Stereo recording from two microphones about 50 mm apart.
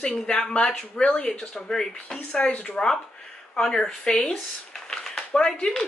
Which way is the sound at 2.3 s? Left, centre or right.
Left.